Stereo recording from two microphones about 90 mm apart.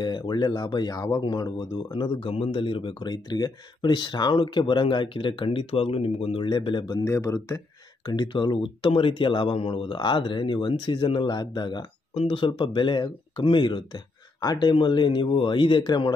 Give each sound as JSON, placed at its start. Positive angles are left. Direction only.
{"t": 0.0, "sound": "speech", "side_deg": 55}
{"t": 2.0, "sound": "speech", "side_deg": 75}
{"t": 6.5, "sound": "speech", "side_deg": 60}
{"t": 7.1, "sound": "speech", "side_deg": 40}
{"t": 8.0, "sound": "speech", "side_deg": 55}
{"t": 9.9, "sound": "speech", "side_deg": 60}
{"t": 12.1, "sound": "speech", "side_deg": 85}